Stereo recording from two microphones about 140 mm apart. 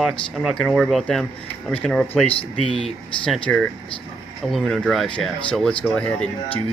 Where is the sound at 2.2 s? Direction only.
40° left (ahead or behind).